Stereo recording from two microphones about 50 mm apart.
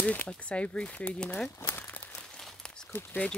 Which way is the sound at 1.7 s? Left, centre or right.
Left.